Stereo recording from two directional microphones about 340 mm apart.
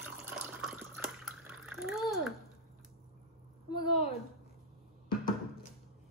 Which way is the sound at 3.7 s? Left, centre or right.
Centre.